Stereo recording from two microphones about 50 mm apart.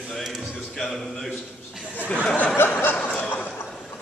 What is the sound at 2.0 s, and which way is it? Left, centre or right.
Speech, left.